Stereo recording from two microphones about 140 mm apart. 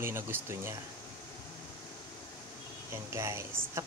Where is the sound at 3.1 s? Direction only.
20° right (ahead or behind).